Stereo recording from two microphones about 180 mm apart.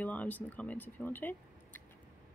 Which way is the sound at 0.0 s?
10° left (ahead or behind).